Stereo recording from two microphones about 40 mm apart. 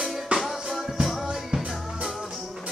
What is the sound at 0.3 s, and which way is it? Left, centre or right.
Music, right.